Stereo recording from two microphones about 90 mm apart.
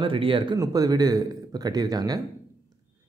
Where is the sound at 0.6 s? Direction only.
45° right (ahead or behind).